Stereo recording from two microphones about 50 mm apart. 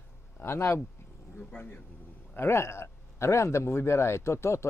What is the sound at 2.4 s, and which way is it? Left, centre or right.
Speech, left.